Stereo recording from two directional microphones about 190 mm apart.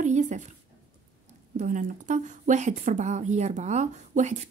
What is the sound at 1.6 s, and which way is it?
A woman's voice, 40° right (ahead or behind).